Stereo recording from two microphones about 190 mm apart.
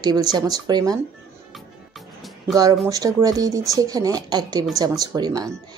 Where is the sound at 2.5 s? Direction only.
20° right (ahead or behind).